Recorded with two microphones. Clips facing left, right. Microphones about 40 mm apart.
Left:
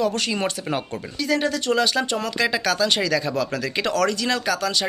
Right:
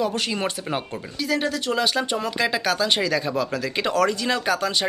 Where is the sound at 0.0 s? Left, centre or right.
Centre.